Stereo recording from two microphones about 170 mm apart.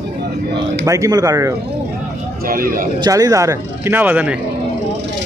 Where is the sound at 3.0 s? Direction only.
20° right (ahead or behind).